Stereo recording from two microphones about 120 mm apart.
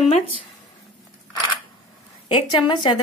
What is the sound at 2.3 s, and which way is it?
Speech, 40° left (ahead or behind).